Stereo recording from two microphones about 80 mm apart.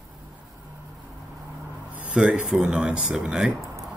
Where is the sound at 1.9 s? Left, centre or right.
Centre.